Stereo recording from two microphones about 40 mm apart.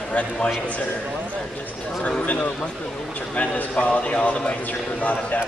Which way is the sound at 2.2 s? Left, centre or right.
Left.